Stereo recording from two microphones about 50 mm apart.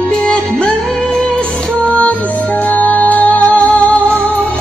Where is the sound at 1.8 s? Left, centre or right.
Left.